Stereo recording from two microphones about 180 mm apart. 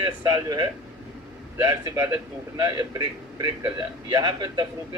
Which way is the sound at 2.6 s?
20° right (ahead or behind).